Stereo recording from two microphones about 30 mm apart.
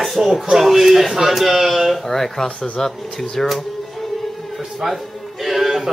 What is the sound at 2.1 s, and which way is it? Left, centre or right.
Speech, centre.